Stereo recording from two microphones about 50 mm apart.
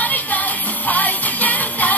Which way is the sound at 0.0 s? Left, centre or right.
Left.